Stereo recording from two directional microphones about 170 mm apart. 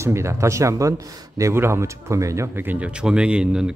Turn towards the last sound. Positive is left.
turn(degrees=-5)  # may be behind; listen again after turning